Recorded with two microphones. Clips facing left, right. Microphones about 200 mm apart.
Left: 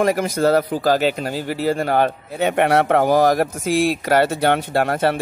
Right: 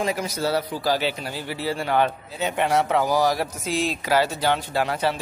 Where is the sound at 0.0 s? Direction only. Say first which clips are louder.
Left 8 dB; 55° left (ahead or behind).